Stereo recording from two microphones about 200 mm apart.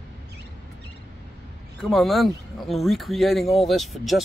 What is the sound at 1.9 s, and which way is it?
Speech, centre (ahead or behind).